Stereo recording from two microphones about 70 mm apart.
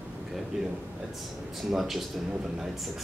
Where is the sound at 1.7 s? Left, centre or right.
Centre.